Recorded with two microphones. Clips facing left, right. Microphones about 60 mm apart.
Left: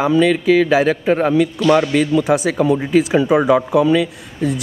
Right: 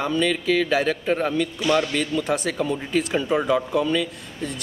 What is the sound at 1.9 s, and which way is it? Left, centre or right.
Speech, centre.